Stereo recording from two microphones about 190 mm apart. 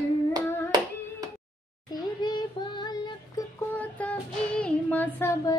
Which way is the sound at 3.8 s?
10° left (ahead or behind).